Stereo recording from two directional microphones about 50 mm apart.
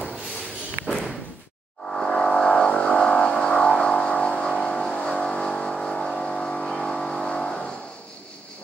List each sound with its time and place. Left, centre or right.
0.8 s slam: centre
1.9 s vehicle: centre